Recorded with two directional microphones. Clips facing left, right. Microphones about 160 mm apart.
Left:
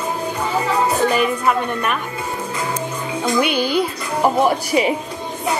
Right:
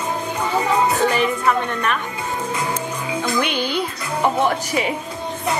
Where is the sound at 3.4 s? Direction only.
10° left (ahead or behind).